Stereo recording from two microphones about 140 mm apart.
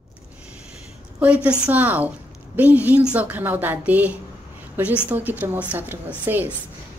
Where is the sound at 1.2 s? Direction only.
10° right (ahead or behind).